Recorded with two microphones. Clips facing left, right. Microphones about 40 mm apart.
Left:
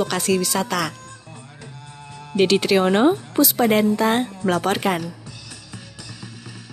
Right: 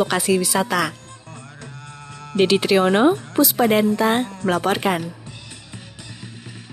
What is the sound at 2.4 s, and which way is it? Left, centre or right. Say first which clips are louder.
Speech: right 1 dB; centre.